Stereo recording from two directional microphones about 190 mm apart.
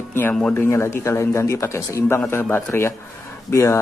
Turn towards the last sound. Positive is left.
turn(degrees=15)  # may be behind; listen again after turning